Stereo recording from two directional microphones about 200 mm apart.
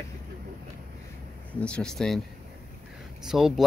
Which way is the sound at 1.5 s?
5° left (ahead or behind).